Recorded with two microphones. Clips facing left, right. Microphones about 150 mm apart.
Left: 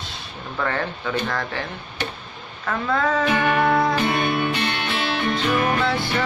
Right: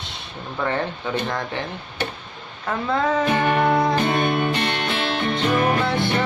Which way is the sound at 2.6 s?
20° right (ahead or behind).